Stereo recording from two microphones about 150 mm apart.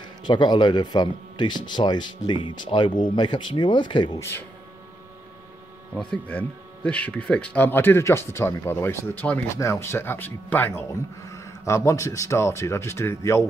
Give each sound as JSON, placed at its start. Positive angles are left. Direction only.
{"t": 0.3, "sound": "speech", "side_deg": 30}
{"t": 4.2, "sound": "speech", "side_deg": 15}
{"t": 5.9, "sound": "speech", "side_deg": 5}